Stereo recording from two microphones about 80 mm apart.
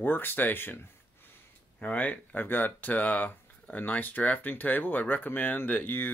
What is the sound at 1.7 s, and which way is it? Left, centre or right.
Speech, centre.